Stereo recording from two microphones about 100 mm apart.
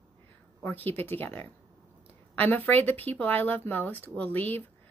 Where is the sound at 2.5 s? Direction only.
20° left (ahead or behind).